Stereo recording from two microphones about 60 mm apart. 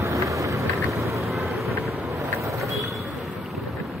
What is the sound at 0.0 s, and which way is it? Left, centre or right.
Vehicle, right.